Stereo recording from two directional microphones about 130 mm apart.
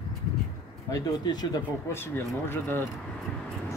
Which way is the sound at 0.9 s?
25° left (ahead or behind).